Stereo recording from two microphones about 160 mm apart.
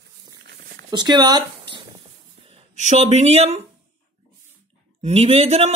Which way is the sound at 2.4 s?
40° right (ahead or behind).